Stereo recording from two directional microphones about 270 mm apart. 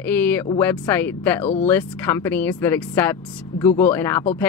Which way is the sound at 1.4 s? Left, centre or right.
Left.